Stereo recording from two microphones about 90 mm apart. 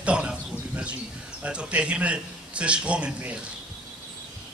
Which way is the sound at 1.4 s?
15° right (ahead or behind).